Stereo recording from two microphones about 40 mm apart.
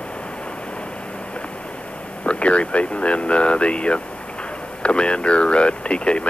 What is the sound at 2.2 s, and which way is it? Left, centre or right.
Speech, left.